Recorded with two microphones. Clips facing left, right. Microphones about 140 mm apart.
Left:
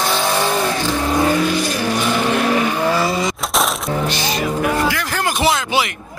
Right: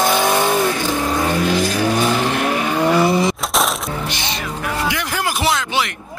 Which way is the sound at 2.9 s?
25° right (ahead or behind).